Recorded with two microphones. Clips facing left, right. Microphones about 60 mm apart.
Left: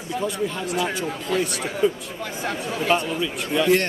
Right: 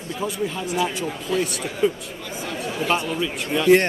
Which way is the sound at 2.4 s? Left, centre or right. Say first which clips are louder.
Left 1 dB; left.